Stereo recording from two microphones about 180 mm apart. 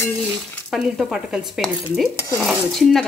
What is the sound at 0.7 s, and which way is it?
Speech, centre (ahead or behind).